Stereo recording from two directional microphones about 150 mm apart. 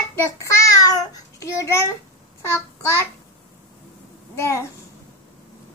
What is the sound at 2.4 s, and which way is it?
Speech, 20° left (ahead or behind).